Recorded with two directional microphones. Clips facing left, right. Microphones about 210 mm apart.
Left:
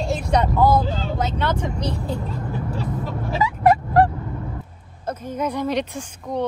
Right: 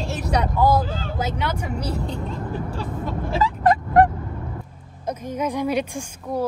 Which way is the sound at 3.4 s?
10° left (ahead or behind).